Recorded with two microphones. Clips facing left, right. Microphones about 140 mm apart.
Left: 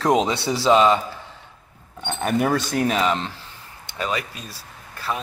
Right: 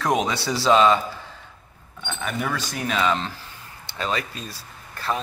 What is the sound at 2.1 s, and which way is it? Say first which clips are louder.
Speech: left 7 dB; 55° left (ahead or behind).